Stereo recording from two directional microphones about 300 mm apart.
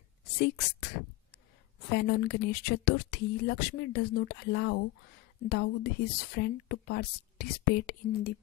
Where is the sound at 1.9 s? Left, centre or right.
Left.